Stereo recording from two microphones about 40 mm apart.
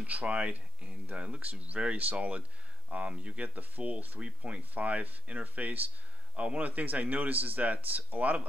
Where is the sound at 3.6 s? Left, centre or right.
Right.